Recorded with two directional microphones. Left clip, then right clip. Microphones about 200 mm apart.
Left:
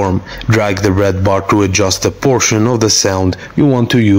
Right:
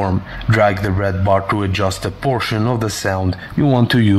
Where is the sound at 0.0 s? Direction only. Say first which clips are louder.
Left 5 dB; 15° left (ahead or behind).